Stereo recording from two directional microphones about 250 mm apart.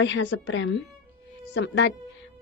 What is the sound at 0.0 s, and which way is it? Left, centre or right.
Speech, left.